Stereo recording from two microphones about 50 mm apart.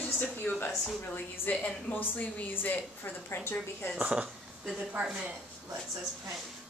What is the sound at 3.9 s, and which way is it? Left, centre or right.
Speech, right.